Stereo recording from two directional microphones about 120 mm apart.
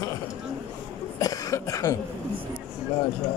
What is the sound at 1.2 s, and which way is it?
Speech, 30° left (ahead or behind).